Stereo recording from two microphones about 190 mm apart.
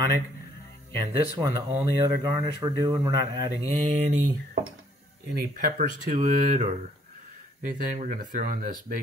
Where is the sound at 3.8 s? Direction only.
40° right (ahead or behind).